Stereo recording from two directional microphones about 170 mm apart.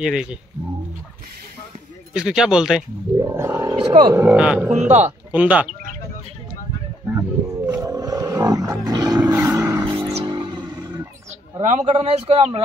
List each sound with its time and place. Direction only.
0.0 s speech: 5° right (ahead or behind)
2.1 s speech: 5° right (ahead or behind)
3.2 s roaring cats: 15° right (ahead or behind)
4.0 s speech: 15° right (ahead or behind)
4.7 s speech: 40° right (ahead or behind)
5.3 s speech: 10° right (ahead or behind)
7.1 s wild animals: 15° right (ahead or behind)
10.1 s a sound: 30° right (ahead or behind)
11.6 s a man's voice: 45° right (ahead or behind)